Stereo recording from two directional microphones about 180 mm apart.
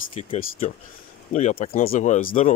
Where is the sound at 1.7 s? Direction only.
50° left (ahead or behind).